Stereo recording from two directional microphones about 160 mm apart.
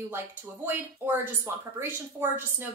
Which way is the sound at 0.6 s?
15° right (ahead or behind).